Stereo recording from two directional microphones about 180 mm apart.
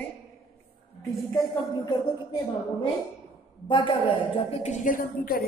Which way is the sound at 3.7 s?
25° left (ahead or behind).